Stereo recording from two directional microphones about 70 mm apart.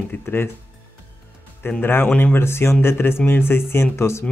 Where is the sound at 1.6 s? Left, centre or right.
Left.